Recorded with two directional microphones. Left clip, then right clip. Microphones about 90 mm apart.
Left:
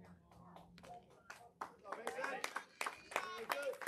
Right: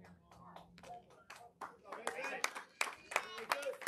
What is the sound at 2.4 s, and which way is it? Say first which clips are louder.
Clapping: right 4 dB; 5° left (ahead or behind).